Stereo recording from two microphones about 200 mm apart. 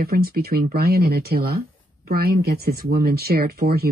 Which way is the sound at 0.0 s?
50° right (ahead or behind).